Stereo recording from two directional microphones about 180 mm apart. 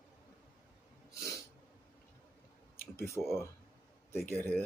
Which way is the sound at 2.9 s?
15° left (ahead or behind).